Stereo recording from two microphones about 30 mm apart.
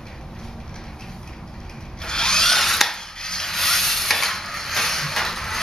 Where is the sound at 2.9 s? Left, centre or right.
Left.